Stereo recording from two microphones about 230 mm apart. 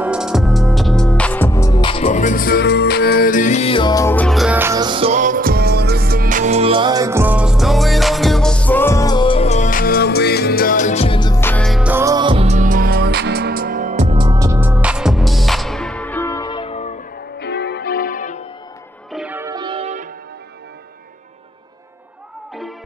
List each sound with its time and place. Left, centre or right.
0.0 s music: centre; by 17.0 s left
17.4 s music: left
19.1 s music: centre; by 20.1 s right